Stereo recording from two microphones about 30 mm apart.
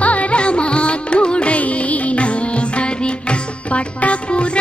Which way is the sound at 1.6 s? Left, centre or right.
Left.